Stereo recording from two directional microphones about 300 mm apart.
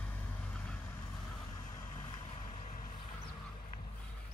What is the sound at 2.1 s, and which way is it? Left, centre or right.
Vehicle, centre.